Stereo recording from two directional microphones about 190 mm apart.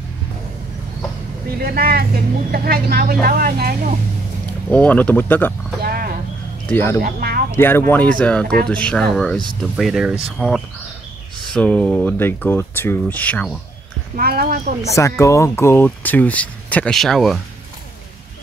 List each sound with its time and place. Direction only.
1.6 s speech: 50° right (ahead or behind)
4.6 s speech: 10° left (ahead or behind)
5.8 s a sound: 50° right (ahead or behind)
6.7 s speech: 10° left (ahead or behind)
7.0 s speech: 50° right (ahead or behind)
7.5 s speech: 10° left (ahead or behind)
14.1 s speech: 50° right (ahead or behind)
15.0 s speech: 15° left (ahead or behind)